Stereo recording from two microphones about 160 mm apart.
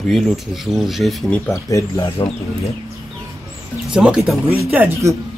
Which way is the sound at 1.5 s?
20° left (ahead or behind).